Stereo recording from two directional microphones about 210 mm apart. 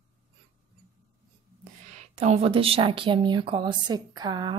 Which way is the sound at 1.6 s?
30° right (ahead or behind).